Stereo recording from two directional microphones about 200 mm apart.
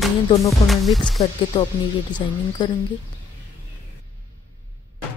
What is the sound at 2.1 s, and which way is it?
Speech, 20° left (ahead or behind).